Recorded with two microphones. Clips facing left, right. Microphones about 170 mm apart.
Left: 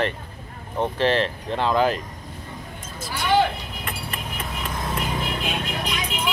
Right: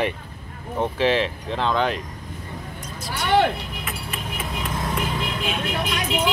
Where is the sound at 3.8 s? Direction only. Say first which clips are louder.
Even; 5° right (ahead or behind).